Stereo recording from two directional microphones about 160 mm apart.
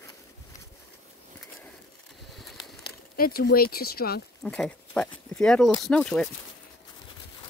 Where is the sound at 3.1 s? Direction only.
65° left (ahead or behind).